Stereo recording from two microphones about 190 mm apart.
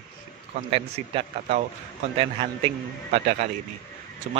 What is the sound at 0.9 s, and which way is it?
A man's voice, 35° right (ahead or behind).